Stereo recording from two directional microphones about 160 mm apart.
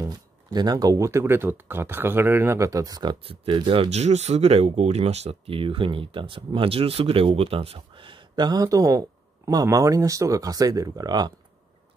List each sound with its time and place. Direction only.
0.5 s speech: 25° right (ahead or behind)